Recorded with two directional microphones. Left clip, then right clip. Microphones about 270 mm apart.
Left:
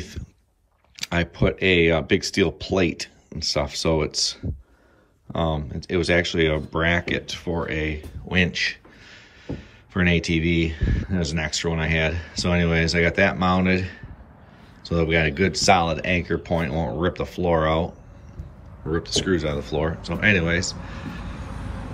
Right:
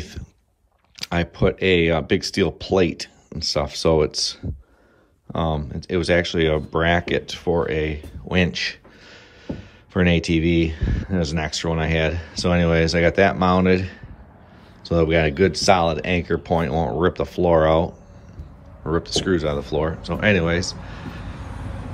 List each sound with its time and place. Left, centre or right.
0.9 s speech: centre